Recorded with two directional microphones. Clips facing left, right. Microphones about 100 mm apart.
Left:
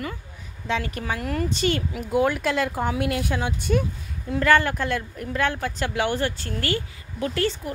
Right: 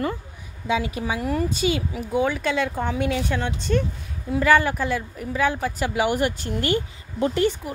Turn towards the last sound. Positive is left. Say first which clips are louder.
# right 3 dB
turn(degrees=-15)  # may be behind; listen again after turning